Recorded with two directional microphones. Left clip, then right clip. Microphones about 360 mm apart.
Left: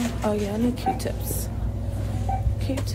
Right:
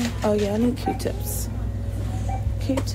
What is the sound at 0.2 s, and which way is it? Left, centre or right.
Speech, centre.